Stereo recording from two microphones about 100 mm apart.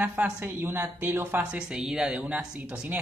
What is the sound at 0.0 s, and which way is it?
A woman's voice, 15° right (ahead or behind).